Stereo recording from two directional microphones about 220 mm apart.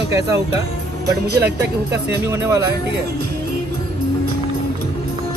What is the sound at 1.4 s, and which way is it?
Speech, 50° right (ahead or behind).